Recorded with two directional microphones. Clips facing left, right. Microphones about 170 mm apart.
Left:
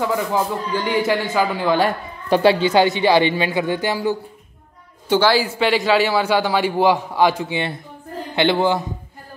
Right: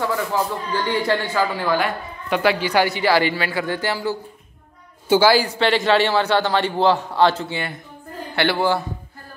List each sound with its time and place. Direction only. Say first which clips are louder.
0.0 s a man's voice: left 2 dB; 15° left (ahead or behind)
1.8 s speech: left 4 dB; 35° left (ahead or behind); by 4.2 s 15° left (ahead or behind)
5.0 s a woman's voice: right 1 dB; 5° right (ahead or behind); by 8.8 s 20° left (ahead or behind)